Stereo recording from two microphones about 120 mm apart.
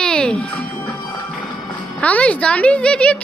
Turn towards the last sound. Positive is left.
turn(degrees=10)  # may be behind; listen again after turning